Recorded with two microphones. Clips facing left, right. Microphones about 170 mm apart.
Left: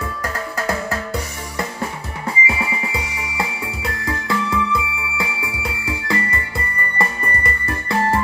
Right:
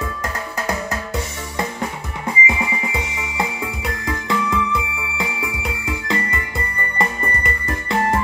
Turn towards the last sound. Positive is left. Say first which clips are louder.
# even
turn(degrees=-20)  # may be behind; listen again after turning